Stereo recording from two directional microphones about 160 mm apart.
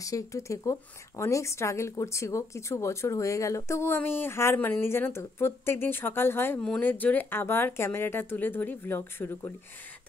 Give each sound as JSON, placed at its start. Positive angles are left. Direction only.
{"t": 0.0, "sound": "speech", "side_deg": 20}